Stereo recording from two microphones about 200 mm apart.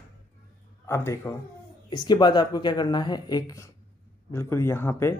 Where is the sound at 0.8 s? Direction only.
15° left (ahead or behind).